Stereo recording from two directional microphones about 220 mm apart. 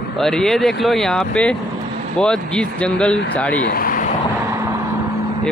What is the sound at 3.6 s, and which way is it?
Vehicle, 40° left (ahead or behind).